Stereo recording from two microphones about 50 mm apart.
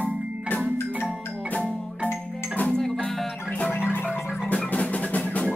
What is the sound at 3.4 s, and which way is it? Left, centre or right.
Music, left.